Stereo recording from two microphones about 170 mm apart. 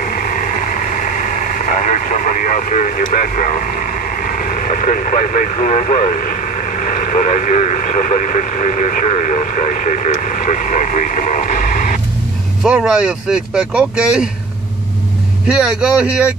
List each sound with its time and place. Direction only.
0.0 s speech: 55° left (ahead or behind)
12.6 s speech: 5° right (ahead or behind)
15.4 s speech: 5° right (ahead or behind)